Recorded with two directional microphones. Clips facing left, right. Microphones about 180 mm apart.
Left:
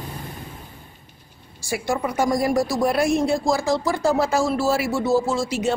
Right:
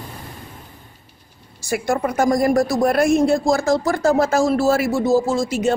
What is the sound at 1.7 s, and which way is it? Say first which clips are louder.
A woman's voice: right 3 dB; 50° right (ahead or behind).